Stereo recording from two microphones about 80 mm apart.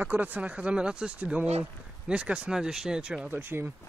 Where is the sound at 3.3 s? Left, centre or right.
Right.